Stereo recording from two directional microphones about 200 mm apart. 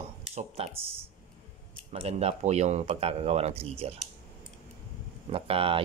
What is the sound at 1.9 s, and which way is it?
Speech, 30° right (ahead or behind).